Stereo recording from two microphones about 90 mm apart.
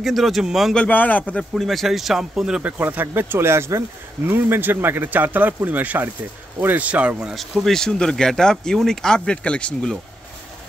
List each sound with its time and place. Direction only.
0.0 s speech: centre (ahead or behind)
0.7 s speech: 15° left (ahead or behind)
1.5 s speech: centre (ahead or behind)
2.8 s a man's voice: 20° right (ahead or behind)
7.6 s speech: 5° left (ahead or behind)